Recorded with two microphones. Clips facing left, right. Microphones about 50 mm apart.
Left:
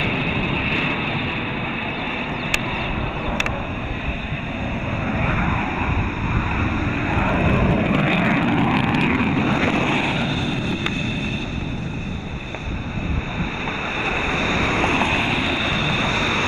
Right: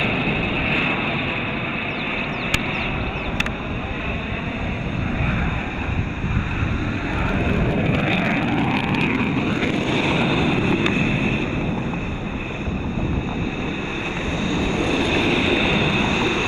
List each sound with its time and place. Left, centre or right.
0.0 s vehicle: centre
7.2 s vehicle: centre
10.0 s vehicle: centre
10.4 s vehicle: right
14.4 s vehicle: left
15.0 s vehicle: left
15.2 s vehicle: centre